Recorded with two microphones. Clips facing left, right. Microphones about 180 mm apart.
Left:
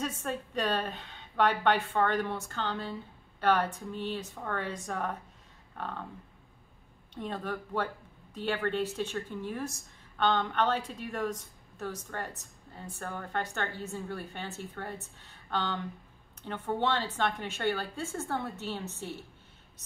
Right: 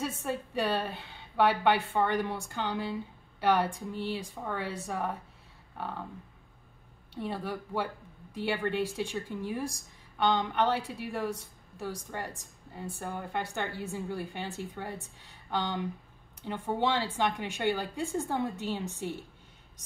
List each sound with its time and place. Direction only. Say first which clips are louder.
0.0 s a woman's voice: right 1 dB; 10° right (ahead or behind)
5.8 s a sound: right 1 dB; 10° right (ahead or behind)
7.2 s a woman's voice: right 1 dB; 10° right (ahead or behind)